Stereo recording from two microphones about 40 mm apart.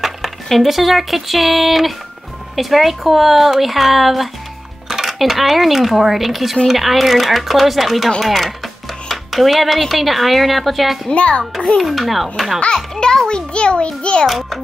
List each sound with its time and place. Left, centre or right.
0.5 s speech: centre
11.1 s a child's voice: left
11.8 s speech: centre
12.7 s music: centre
13.5 s a child's voice: left
14.2 s speech: centre